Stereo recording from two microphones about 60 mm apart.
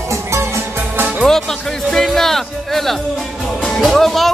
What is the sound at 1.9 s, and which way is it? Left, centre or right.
Music, centre.